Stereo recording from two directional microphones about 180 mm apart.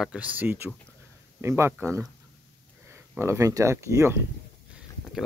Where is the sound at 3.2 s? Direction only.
15° right (ahead or behind).